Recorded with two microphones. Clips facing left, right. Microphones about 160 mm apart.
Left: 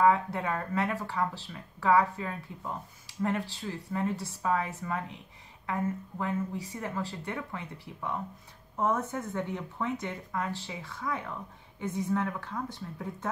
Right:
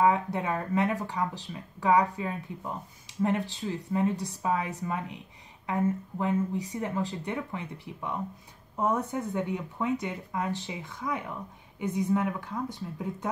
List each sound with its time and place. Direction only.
0.0 s a woman's voice: 20° right (ahead or behind)